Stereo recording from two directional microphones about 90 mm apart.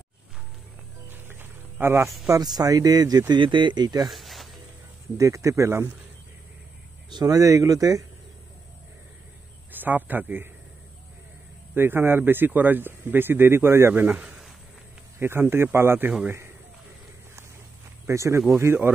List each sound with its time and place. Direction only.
1.1 s music: 25° right (ahead or behind)
2.4 s speech: 45° right (ahead or behind)
3.3 s speech: 60° right (ahead or behind)
4.1 s a sound: centre (ahead or behind)
5.1 s speech: 35° right (ahead or behind)
7.1 s speech: 45° right (ahead or behind)
9.7 s a man's voice: 20° right (ahead or behind)
11.7 s a man's voice: 25° right (ahead or behind)
18.0 s speech: 30° right (ahead or behind)